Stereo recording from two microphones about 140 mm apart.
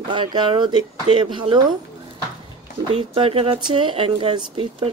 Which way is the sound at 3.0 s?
40° right (ahead or behind).